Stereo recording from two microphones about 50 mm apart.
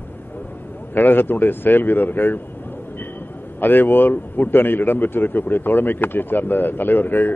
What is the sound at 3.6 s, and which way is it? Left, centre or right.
A man's voice, left.